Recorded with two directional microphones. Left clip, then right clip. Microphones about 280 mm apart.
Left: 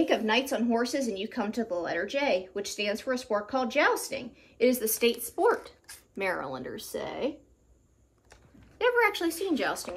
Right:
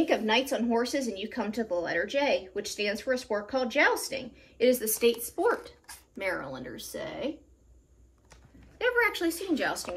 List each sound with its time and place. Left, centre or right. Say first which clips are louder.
0.0 s a woman's voice: even; centre; by 7.3 s left
8.7 s a woman's voice: left 2 dB; centre